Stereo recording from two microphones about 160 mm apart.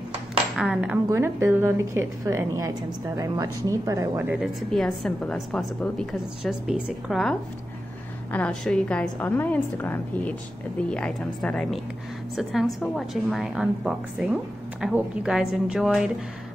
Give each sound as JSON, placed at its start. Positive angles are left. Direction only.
{"t": 0.6, "sound": "a woman's voice", "side_deg": -5}
{"t": 12.8, "sound": "a woman's voice", "side_deg": 0}